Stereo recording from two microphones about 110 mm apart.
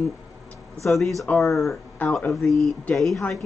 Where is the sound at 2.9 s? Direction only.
Centre (ahead or behind).